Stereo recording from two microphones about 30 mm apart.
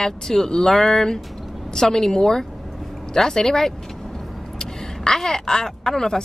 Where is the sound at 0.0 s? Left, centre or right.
Centre.